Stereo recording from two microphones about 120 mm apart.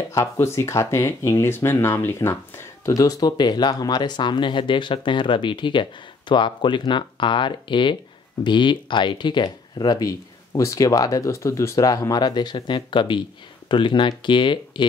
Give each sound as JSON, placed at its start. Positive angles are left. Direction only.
{"t": 0.1, "sound": "speech", "side_deg": 25}